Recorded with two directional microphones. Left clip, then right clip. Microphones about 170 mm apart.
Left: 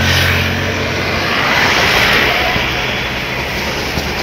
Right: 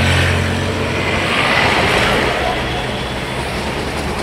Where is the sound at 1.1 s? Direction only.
10° right (ahead or behind); by 2.2 s 30° right (ahead or behind).